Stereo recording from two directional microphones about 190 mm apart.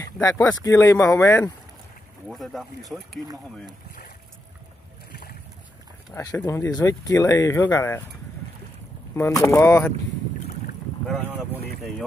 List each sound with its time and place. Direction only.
0.0 s speech: 15° left (ahead or behind)
2.2 s speech: centre (ahead or behind)
6.1 s speech: 15° left (ahead or behind)
9.1 s speech: 15° left (ahead or behind)
11.2 s speech: 10° right (ahead or behind)